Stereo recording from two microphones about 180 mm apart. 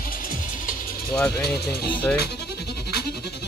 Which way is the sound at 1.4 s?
60° left (ahead or behind).